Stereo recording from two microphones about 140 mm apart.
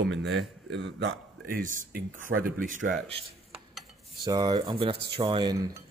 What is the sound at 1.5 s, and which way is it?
Speech, 75° right (ahead or behind).